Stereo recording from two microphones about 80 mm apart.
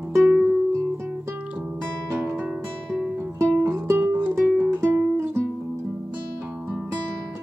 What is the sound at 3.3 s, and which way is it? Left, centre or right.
Music, right.